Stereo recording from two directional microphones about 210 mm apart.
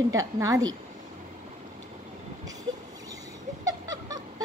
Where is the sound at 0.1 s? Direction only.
15° right (ahead or behind).